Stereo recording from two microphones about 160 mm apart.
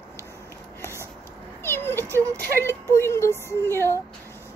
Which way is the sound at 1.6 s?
15° left (ahead or behind).